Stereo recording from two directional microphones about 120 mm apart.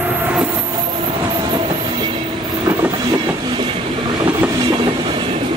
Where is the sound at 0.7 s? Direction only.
35° right (ahead or behind).